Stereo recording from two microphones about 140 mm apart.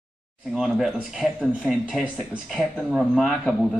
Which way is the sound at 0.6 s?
Centre (ahead or behind).